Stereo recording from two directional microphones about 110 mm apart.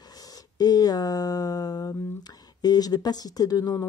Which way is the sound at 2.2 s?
40° left (ahead or behind).